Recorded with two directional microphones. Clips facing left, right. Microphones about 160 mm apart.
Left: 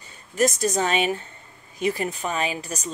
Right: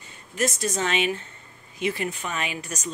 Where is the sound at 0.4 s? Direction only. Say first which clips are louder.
Left 4 dB; 40° left (ahead or behind).